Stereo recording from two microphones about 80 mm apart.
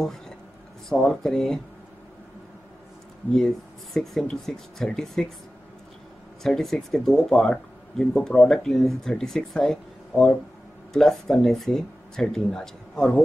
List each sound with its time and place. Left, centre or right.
0.8 s speech: centre
3.3 s speech: centre
6.4 s speech: centre